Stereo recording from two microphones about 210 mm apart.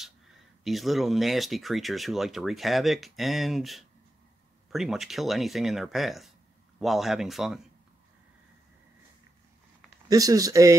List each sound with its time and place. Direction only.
0.7 s speech: centre (ahead or behind)
10.0 s speech: 15° right (ahead or behind)